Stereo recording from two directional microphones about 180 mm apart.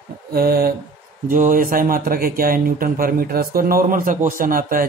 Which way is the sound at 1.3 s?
50° right (ahead or behind).